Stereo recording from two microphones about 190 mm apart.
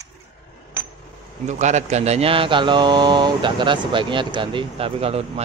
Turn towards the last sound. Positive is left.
turn(degrees=-30)  # may be behind; listen again after turning